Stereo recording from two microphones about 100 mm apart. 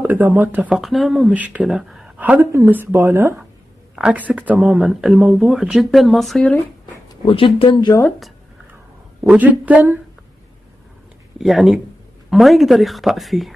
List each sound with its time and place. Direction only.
0.0 s speech: 20° right (ahead or behind)
0.7 s speech: centre (ahead or behind)
1.3 s speech: 15° right (ahead or behind)
1.7 s speech: 5° right (ahead or behind)
2.1 s a woman's voice: 15° right (ahead or behind)
3.9 s speech: 10° right (ahead or behind)
7.2 s speech: 60° left (ahead or behind)
9.3 s speech: 15° right (ahead or behind)
11.3 s speech: centre (ahead or behind)